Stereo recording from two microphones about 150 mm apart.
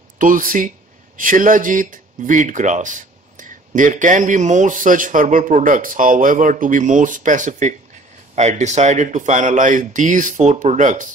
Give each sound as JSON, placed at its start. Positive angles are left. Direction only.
{"t": 0.2, "sound": "speech", "side_deg": -65}